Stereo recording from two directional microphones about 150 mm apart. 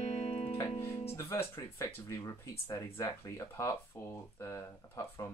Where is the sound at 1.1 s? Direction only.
15° left (ahead or behind).